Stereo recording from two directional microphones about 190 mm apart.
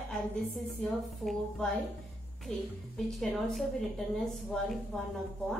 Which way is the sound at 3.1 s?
Centre (ahead or behind).